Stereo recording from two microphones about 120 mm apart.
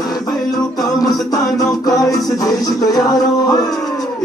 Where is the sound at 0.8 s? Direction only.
30° left (ahead or behind).